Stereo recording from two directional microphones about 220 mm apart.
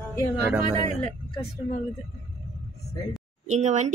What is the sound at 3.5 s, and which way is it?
Speech, 30° right (ahead or behind).